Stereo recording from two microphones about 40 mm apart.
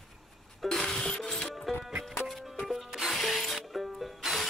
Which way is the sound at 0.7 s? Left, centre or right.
Centre.